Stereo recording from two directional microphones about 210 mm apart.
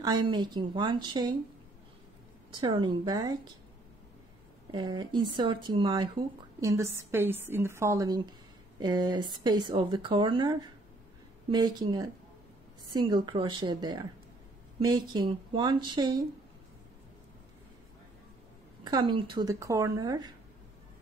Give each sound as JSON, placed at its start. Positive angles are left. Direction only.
{"t": 0.0, "sound": "speech", "side_deg": -20}
{"t": 2.5, "sound": "speech", "side_deg": -25}
{"t": 4.6, "sound": "a woman's voice", "side_deg": -20}
{"t": 18.9, "sound": "a woman's voice", "side_deg": -20}